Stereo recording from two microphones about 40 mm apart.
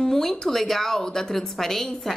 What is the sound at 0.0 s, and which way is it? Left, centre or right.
A woman's voice, centre.